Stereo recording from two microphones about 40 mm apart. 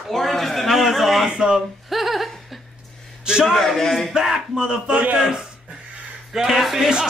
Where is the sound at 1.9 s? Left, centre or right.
Centre.